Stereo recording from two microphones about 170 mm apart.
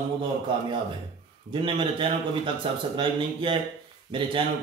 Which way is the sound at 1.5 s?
30° right (ahead or behind).